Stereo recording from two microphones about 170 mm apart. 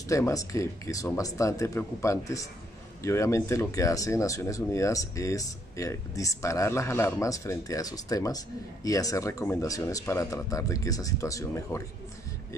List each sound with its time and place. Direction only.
0.1 s speech: 20° left (ahead or behind)